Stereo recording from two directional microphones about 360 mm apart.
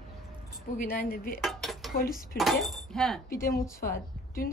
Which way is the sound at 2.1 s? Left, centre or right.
Centre.